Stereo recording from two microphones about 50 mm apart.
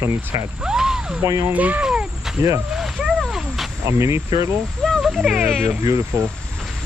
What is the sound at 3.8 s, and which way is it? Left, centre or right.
Speech, right.